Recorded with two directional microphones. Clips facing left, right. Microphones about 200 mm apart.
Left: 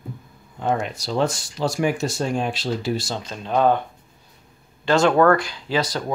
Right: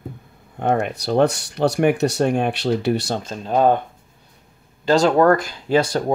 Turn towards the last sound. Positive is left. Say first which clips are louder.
# right 6 dB
turn(degrees=-50)  # may be behind; listen again after turning